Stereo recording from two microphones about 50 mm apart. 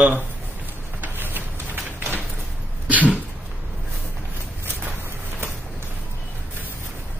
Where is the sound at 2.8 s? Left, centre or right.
Right.